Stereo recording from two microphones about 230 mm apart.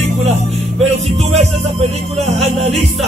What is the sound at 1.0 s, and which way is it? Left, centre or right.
Music, right.